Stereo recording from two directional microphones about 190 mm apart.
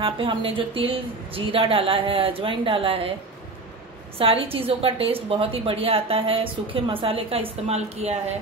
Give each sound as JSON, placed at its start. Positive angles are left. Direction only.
{"t": 0.0, "sound": "a woman's voice", "side_deg": -30}
{"t": 4.2, "sound": "a woman's voice", "side_deg": -30}